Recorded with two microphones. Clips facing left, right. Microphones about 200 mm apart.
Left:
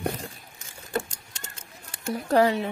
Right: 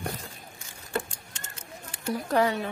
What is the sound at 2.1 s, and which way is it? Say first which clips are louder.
Speech: left 4 dB; 30° left (ahead or behind).